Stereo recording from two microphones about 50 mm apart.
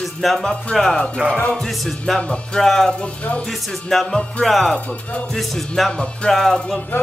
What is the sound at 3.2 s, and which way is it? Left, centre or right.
Music, left.